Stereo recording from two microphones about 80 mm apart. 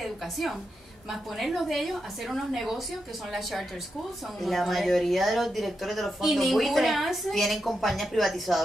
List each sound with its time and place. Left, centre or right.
0.0 s a woman's voice: centre
4.4 s speech: centre